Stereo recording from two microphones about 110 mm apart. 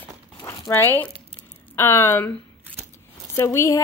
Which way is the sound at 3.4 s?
25° left (ahead or behind).